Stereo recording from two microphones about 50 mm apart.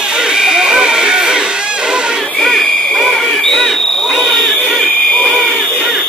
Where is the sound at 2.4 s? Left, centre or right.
Centre.